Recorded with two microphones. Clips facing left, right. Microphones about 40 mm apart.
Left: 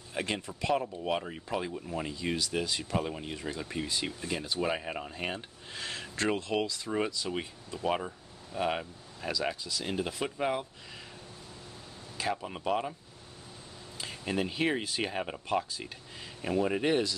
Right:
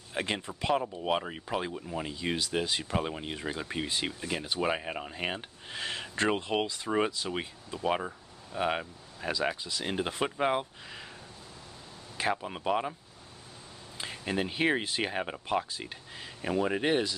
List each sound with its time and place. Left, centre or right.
0.1 s speech: right
1.9 s speech: centre
2.1 s speech: centre
7.2 s speech: centre
9.6 s speech: right
12.3 s speech: centre
13.9 s speech: right